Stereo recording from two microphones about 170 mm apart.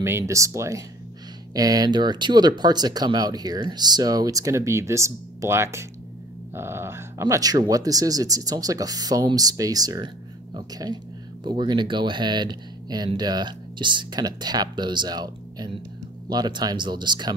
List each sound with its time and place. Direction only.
0.2 s speech: 20° right (ahead or behind)